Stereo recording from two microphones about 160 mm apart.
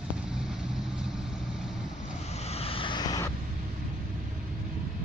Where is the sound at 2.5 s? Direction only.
40° left (ahead or behind).